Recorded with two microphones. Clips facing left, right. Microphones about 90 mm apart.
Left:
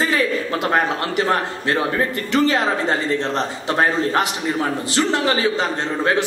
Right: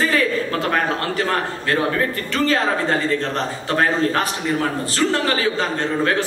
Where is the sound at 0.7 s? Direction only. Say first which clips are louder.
Left 4 dB; 20° left (ahead or behind).